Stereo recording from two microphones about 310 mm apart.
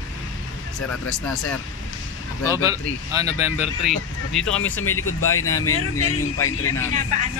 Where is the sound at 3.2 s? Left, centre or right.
Left.